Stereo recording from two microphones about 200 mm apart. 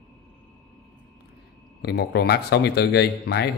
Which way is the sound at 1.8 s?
55° left (ahead or behind).